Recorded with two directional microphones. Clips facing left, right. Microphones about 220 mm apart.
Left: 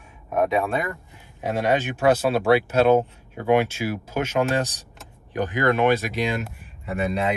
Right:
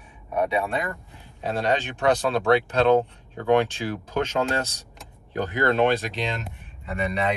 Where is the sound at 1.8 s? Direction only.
5° left (ahead or behind).